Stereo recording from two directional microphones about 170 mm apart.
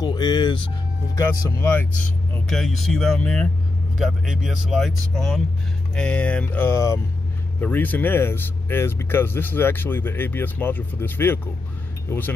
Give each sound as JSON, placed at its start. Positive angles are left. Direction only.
{"t": 0.0, "sound": "music", "side_deg": 25}
{"t": 1.1, "sound": "speech", "side_deg": 15}
{"t": 2.3, "sound": "speech", "side_deg": 0}